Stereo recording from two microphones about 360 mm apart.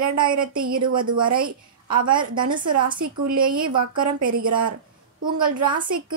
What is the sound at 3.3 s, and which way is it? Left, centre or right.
Speech, right.